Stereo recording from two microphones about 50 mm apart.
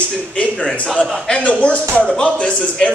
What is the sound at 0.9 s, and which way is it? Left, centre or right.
A man's voice, centre.